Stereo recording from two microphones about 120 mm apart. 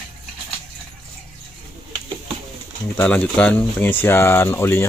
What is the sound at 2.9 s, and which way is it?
Speech, 10° left (ahead or behind).